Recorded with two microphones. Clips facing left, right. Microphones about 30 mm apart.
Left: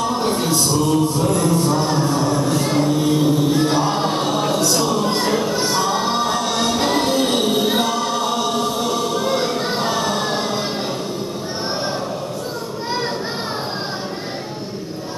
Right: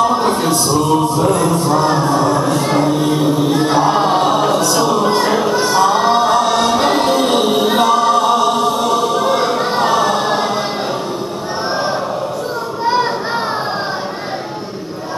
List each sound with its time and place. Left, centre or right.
0.0 s music: centre
5.8 s a capella: centre